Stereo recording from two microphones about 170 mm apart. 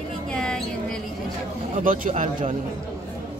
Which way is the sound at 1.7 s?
50° right (ahead or behind).